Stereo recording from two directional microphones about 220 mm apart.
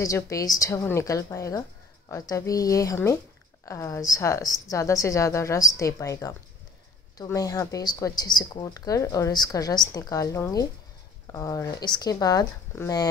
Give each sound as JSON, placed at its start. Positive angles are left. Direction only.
{"t": 0.0, "sound": "a woman's voice", "side_deg": 15}